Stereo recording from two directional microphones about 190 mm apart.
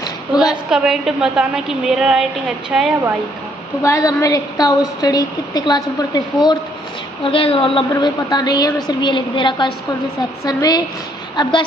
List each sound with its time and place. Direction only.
0.0 s a sound: 20° left (ahead or behind)
0.5 s a woman's voice: 5° right (ahead or behind)
3.8 s a woman's voice: 15° left (ahead or behind)